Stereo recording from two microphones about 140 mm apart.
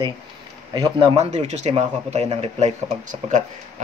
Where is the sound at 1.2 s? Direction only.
50° right (ahead or behind).